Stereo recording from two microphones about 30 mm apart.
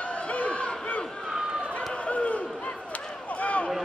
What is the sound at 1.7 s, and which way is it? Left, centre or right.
Run, left.